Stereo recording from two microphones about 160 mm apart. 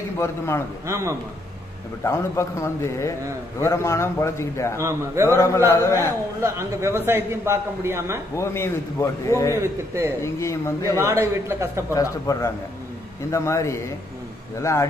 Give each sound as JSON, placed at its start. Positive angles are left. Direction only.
{"t": 0.2, "sound": "a man's voice", "side_deg": 15}
{"t": 0.8, "sound": "a man's voice", "side_deg": -20}
{"t": 2.0, "sound": "a man's voice", "side_deg": 15}
{"t": 4.7, "sound": "a man's voice", "side_deg": -15}
{"t": 5.3, "sound": "a man's voice", "side_deg": 20}
{"t": 6.4, "sound": "a man's voice", "side_deg": -15}
{"t": 8.4, "sound": "a man's voice", "side_deg": 15}
{"t": 9.6, "sound": "a man's voice", "side_deg": -15}
{"t": 10.2, "sound": "a man's voice", "side_deg": 20}
{"t": 11.0, "sound": "a man's voice", "side_deg": -15}
{"t": 11.9, "sound": "speech", "side_deg": 20}